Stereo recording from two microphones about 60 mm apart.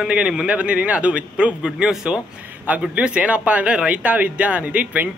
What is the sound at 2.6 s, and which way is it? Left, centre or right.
Speech, right.